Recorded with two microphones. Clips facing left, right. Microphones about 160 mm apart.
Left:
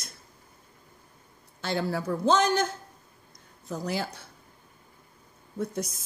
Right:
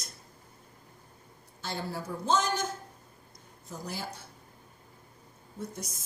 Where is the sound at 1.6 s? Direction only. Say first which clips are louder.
Left 7 dB; 75° left (ahead or behind).